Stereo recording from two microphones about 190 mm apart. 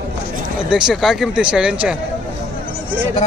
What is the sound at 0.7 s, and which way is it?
Speech, 5° right (ahead or behind).